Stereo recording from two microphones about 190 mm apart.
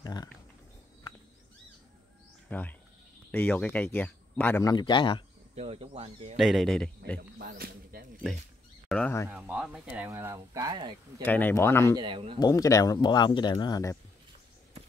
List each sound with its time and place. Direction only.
0.0 s a sound: 20° left (ahead or behind)
2.5 s speech: 10° left (ahead or behind)
4.7 s speech: 25° left (ahead or behind)
5.6 s speech: 30° right (ahead or behind)
6.3 s speech: centre (ahead or behind)
7.3 s a sound: 50° right (ahead or behind)
8.8 s a sound: 5° left (ahead or behind)
9.3 s speech: 5° right (ahead or behind); by 11.2 s 20° right (ahead or behind)
11.2 s speech: 10° left (ahead or behind)
12.0 s speech: 25° right (ahead or behind)
12.4 s speech: 20° left (ahead or behind)